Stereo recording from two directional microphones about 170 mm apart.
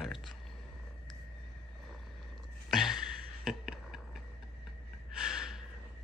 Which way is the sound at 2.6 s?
Centre (ahead or behind).